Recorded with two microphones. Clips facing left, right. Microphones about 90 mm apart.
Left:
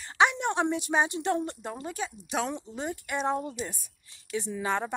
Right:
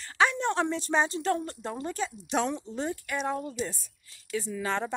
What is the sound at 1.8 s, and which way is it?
Speech, 10° left (ahead or behind).